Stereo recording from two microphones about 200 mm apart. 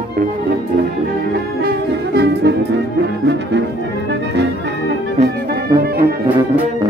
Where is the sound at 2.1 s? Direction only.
55° right (ahead or behind).